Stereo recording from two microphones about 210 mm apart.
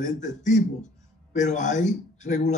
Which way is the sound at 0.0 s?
35° left (ahead or behind).